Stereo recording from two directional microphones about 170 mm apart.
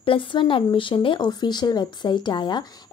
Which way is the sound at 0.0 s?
30° left (ahead or behind).